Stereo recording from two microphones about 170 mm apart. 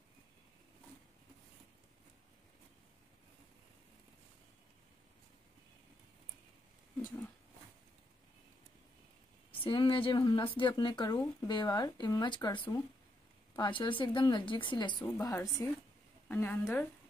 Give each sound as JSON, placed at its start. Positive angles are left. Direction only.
{"t": 9.5, "sound": "a woman's voice", "side_deg": 30}